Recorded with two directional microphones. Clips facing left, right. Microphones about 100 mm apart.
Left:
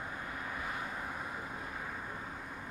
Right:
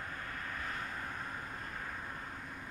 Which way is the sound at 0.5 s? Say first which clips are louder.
Left 2 dB; 10° left (ahead or behind).